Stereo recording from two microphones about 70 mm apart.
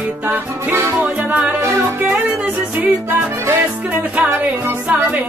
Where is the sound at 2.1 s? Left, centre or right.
Centre.